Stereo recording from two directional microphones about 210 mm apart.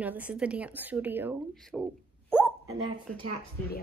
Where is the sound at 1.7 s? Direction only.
Centre (ahead or behind).